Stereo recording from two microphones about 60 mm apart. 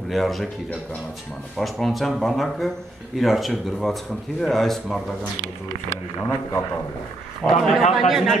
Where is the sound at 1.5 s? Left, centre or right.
Centre.